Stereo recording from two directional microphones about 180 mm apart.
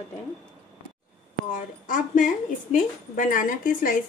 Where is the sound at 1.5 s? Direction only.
45° left (ahead or behind).